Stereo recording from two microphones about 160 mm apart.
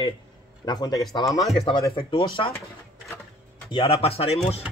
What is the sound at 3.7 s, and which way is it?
Speech, 35° left (ahead or behind).